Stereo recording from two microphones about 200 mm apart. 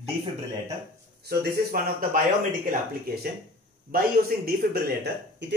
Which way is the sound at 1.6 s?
50° right (ahead or behind).